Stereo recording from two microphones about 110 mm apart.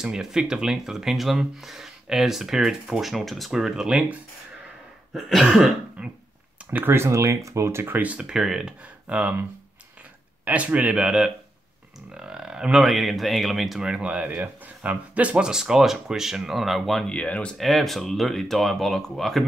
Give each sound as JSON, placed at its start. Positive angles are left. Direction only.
{"t": 0.0, "sound": "speech", "side_deg": -5}
{"t": 6.7, "sound": "speech", "side_deg": -20}
{"t": 10.4, "sound": "speech", "side_deg": -10}